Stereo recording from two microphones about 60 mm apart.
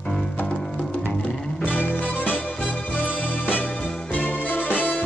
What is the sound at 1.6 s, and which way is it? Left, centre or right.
Music, left.